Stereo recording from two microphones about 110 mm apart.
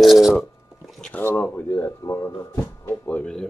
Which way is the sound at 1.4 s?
25° left (ahead or behind).